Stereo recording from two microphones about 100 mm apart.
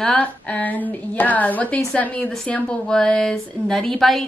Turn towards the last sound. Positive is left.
turn(degrees=0)  # may be behind; listen again after turning